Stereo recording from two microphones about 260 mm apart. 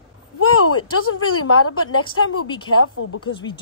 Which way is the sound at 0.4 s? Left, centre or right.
Left.